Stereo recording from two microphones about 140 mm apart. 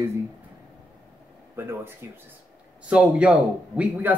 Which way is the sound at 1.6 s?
15° right (ahead or behind).